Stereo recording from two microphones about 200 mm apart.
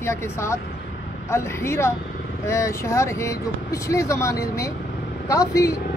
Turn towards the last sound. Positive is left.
turn(degrees=15)  # may be behind; listen again after turning